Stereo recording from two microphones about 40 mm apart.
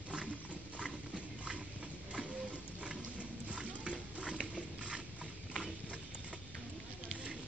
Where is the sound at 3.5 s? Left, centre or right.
Right.